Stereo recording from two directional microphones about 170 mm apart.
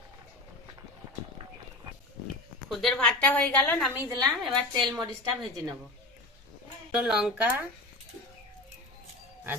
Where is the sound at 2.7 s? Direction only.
Centre (ahead or behind).